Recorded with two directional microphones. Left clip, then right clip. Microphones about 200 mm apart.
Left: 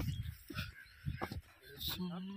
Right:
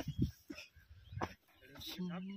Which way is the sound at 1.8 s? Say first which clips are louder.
Left 5 dB; centre (ahead or behind).